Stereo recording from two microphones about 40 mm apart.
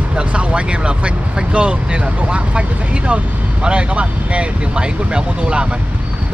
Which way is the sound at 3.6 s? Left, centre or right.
Right.